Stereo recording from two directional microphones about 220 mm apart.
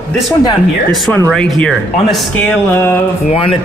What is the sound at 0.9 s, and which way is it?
Speech, centre (ahead or behind).